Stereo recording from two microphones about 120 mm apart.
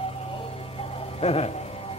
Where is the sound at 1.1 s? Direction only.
60° left (ahead or behind).